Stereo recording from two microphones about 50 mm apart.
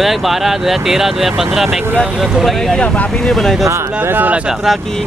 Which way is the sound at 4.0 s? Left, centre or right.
Right.